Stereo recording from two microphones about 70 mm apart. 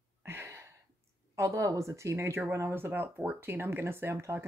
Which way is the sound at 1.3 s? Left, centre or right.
Right.